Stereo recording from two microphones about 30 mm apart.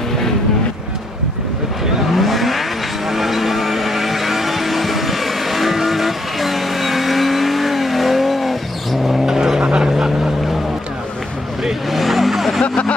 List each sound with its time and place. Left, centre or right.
2.1 s vehicle: centre
9.2 s vehicle: centre
9.6 s vehicle: right
9.8 s vehicle: centre
11.9 s vehicle: centre
12.6 s vehicle: left